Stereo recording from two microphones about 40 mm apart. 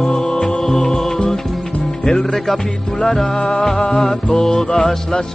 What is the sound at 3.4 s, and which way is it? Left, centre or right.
Music, left.